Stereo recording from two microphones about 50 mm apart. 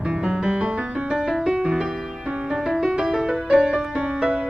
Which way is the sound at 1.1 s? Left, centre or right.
Centre.